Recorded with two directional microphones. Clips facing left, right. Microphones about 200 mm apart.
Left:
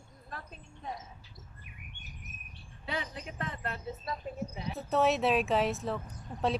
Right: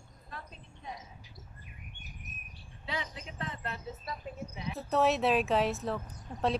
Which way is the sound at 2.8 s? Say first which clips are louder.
Left 2 dB; 50° left (ahead or behind).